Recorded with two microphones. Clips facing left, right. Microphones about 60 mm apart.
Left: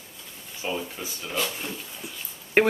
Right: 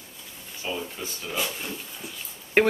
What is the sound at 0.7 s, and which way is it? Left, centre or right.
Speech, centre.